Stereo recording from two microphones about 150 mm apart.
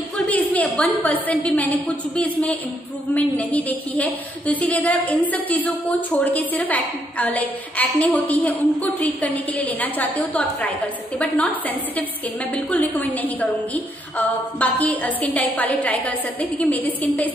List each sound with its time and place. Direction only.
0.3 s a woman's voice: 10° left (ahead or behind)